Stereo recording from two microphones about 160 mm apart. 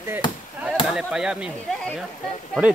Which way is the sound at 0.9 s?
5° right (ahead or behind).